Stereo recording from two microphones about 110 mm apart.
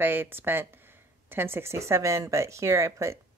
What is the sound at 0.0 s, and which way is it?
Speech, 20° right (ahead or behind).